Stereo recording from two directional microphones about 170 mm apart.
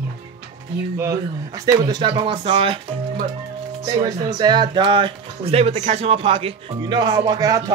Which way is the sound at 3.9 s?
20° right (ahead or behind).